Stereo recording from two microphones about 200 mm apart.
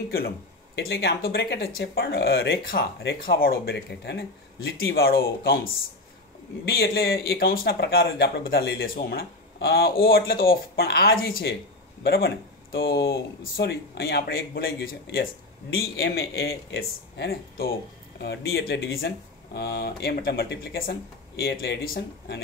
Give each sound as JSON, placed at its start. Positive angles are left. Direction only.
{"t": 0.7, "sound": "speech", "side_deg": 55}